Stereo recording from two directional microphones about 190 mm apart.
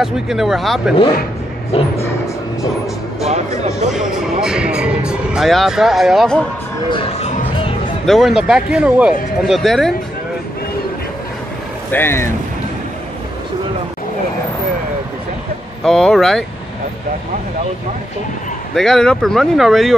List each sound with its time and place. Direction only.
0.0 s speech: centre (ahead or behind)
1.7 s music: 30° left (ahead or behind)
3.3 s speech: 35° right (ahead or behind)
3.9 s speech: 5° right (ahead or behind)
6.9 s music: 30° left (ahead or behind)
8.1 s speech: centre (ahead or behind)
11.9 s speech: 10° left (ahead or behind)
15.8 s speech: centre (ahead or behind)
18.8 s speech: centre (ahead or behind)